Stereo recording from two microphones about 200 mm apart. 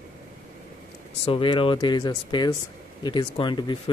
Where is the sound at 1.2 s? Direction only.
25° left (ahead or behind).